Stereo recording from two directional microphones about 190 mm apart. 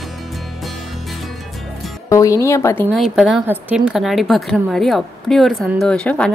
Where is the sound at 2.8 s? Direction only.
Centre (ahead or behind).